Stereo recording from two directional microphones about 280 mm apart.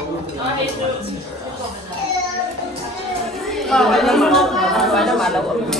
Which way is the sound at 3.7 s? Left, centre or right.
Centre.